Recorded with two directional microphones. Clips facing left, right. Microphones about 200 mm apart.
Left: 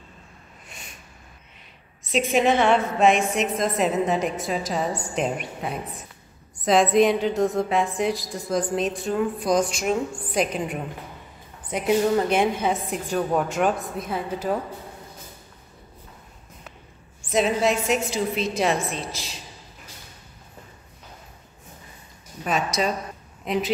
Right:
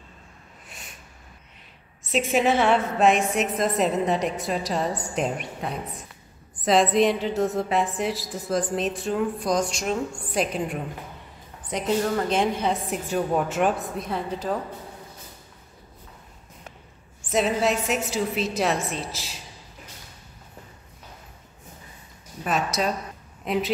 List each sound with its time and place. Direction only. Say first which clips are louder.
2.1 s a woman's voice: left 1 dB; 5° right (ahead or behind)
13.1 s a woman's voice: left 1 dB; 5° right (ahead or behind)
17.3 s a woman's voice: left 1 dB; centre (ahead or behind)
22.5 s a woman's voice: left 1 dB; 5° right (ahead or behind)